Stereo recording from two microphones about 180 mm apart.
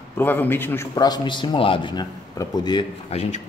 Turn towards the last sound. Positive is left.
turn(degrees=35)  # may be behind; listen again after turning